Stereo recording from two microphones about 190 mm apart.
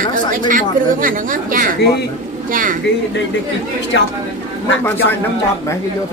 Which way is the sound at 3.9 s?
70° left (ahead or behind).